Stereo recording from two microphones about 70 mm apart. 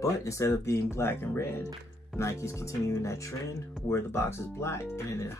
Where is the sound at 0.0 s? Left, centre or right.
Left.